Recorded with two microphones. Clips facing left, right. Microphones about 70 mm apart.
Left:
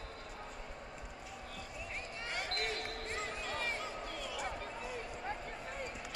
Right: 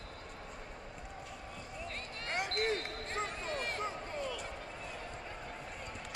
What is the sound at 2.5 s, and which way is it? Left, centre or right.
Basketball bounce, right.